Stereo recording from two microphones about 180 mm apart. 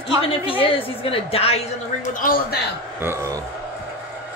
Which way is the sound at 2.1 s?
50° left (ahead or behind).